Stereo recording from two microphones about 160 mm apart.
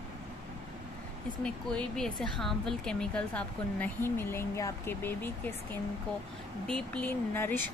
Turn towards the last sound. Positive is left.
turn(degrees=15)  # may be behind; listen again after turning